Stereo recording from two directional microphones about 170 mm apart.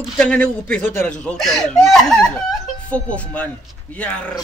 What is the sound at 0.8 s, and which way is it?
Speech, 45° right (ahead or behind).